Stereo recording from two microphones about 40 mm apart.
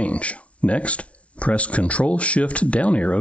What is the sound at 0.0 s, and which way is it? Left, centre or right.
Speech, left.